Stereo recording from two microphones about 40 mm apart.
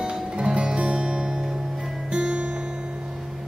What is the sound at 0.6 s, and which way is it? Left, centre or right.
Music, right.